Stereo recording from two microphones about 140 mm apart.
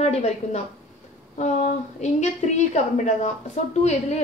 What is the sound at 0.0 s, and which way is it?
A woman's voice, 50° left (ahead or behind).